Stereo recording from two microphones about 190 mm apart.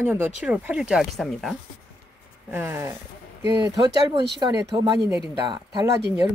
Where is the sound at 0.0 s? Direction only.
10° right (ahead or behind).